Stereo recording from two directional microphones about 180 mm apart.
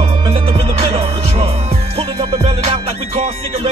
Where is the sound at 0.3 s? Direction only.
30° right (ahead or behind).